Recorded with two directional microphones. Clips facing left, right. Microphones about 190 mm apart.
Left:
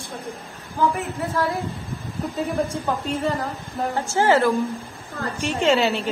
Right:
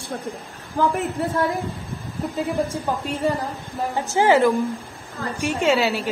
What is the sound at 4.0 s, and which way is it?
A woman's voice, 15° right (ahead or behind).